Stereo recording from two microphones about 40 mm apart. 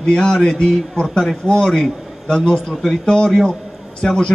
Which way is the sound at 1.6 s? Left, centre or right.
Centre.